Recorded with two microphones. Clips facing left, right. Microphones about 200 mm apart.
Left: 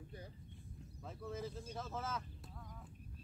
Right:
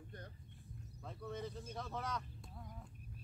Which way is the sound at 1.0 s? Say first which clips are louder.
Even; 5° left (ahead or behind).